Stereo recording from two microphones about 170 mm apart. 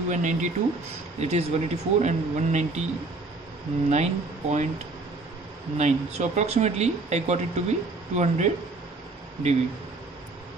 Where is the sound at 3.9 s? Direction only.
40° right (ahead or behind).